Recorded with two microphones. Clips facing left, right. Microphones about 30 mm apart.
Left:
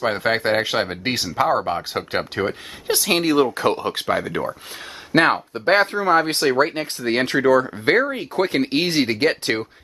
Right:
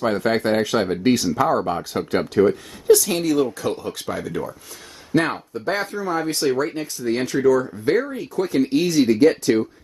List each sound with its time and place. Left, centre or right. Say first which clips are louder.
0.0 s speech: even; left
1.5 s speech: even; left